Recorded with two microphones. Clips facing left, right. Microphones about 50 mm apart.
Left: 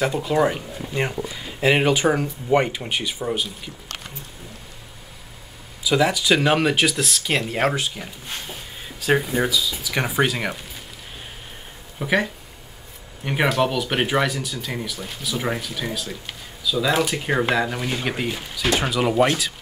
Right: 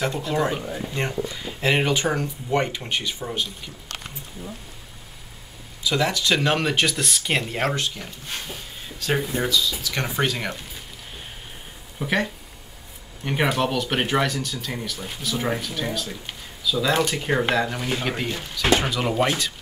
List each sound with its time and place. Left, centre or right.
0.0 s speech: centre
5.9 s speech: centre
12.0 s speech: centre